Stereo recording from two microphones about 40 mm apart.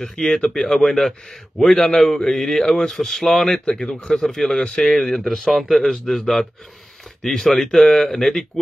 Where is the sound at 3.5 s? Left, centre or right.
Centre.